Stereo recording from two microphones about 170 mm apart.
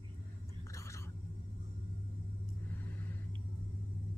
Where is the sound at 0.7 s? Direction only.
15° left (ahead or behind).